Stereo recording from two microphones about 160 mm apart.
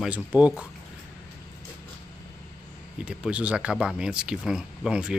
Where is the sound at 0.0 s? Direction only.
10° right (ahead or behind).